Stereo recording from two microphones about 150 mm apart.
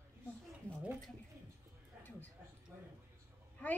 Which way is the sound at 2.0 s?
10° left (ahead or behind).